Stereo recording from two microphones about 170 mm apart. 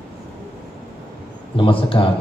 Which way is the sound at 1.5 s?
30° left (ahead or behind).